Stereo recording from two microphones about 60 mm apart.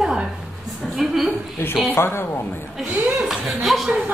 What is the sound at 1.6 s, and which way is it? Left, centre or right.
A woman's voice, left.